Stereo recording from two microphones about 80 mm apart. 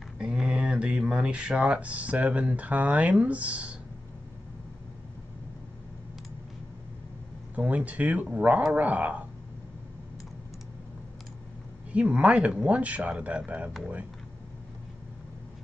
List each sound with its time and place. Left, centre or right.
0.2 s speech: centre
7.5 s speech: centre
11.9 s speech: centre